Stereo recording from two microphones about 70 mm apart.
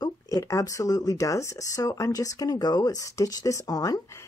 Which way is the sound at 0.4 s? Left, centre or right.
Left.